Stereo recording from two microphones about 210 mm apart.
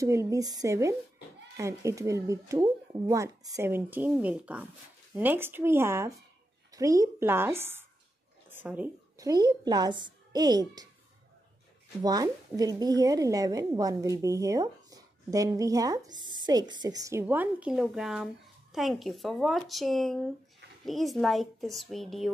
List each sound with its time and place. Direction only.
0.0 s a woman's voice: 15° right (ahead or behind)
12.0 s a woman's voice: 20° right (ahead or behind); by 22.3 s centre (ahead or behind)